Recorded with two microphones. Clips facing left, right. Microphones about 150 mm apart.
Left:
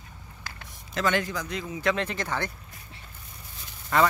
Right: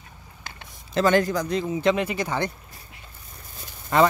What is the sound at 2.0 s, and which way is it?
Speech, 10° right (ahead or behind).